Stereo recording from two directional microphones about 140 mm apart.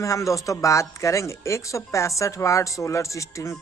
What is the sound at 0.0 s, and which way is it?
Speech, 25° left (ahead or behind).